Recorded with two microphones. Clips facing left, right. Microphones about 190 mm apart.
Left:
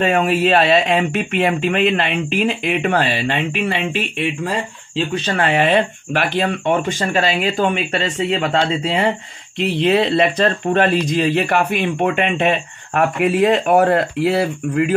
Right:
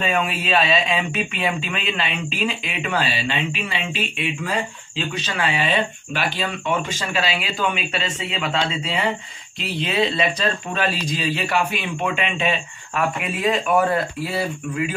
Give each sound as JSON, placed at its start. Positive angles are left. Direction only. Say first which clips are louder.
{"t": 0.0, "sound": "speech", "louder": "left 8 dB", "side_deg": 45}
{"t": 5.1, "sound": "speech", "louder": "left 7 dB", "side_deg": 55}
{"t": 8.6, "sound": "speech", "louder": "left 7 dB", "side_deg": 30}
{"t": 9.6, "sound": "speech", "louder": "left 7 dB", "side_deg": 60}
{"t": 13.7, "sound": "speech", "louder": "left 5 dB", "side_deg": 65}